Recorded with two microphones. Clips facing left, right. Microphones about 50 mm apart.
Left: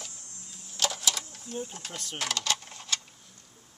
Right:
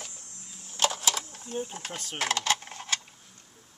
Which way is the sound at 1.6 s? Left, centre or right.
Right.